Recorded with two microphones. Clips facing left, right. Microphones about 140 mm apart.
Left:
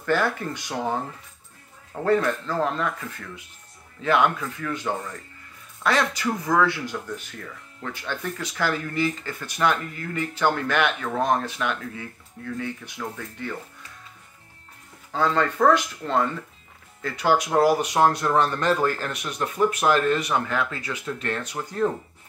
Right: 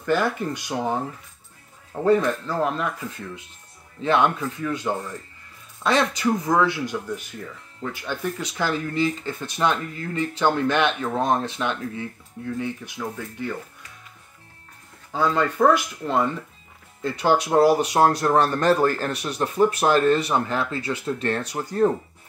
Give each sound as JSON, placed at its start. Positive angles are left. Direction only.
{"t": 0.0, "sound": "speech", "side_deg": -15}
{"t": 2.0, "sound": "speech", "side_deg": -15}
{"t": 15.1, "sound": "speech", "side_deg": -10}
{"t": 17.0, "sound": "speech", "side_deg": -25}